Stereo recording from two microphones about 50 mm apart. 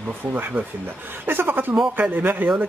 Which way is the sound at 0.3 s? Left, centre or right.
Right.